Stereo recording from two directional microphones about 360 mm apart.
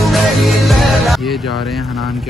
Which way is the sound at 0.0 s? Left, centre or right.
Centre.